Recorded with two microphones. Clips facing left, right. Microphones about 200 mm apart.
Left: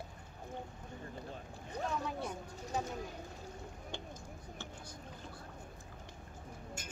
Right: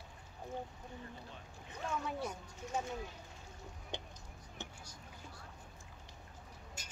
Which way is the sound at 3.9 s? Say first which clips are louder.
Right 1 dB; 20° right (ahead or behind).